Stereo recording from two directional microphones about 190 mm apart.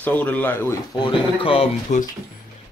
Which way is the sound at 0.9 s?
25° left (ahead or behind).